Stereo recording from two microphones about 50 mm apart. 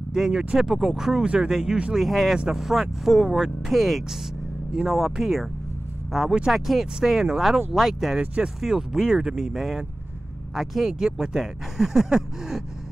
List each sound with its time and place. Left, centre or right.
0.1 s speech: centre
1.2 s speech: right
1.5 s speech: centre
2.0 s speech: centre